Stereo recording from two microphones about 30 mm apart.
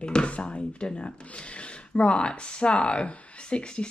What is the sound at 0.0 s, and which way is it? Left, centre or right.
Speech, left.